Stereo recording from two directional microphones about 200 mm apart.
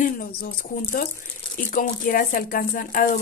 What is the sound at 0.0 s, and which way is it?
Speech, 50° left (ahead or behind).